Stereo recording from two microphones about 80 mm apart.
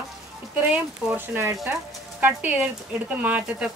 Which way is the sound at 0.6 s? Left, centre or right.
Right.